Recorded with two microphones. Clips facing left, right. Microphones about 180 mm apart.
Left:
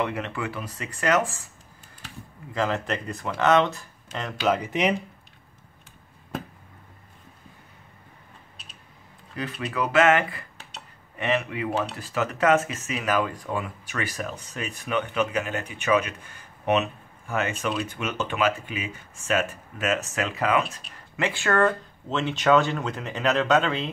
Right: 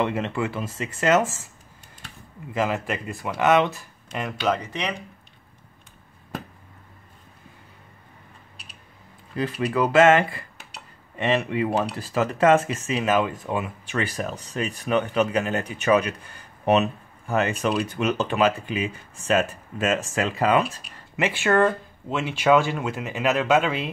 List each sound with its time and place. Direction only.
0.0 s speech: 25° right (ahead or behind)
2.5 s speech: 15° right (ahead or behind)
3.3 s speech: 15° right (ahead or behind)
4.4 s speech: centre (ahead or behind)
9.4 s speech: 30° right (ahead or behind)
21.4 s speech: 15° right (ahead or behind)